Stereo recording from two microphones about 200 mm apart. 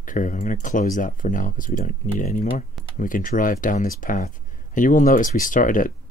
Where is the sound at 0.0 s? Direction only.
40° left (ahead or behind).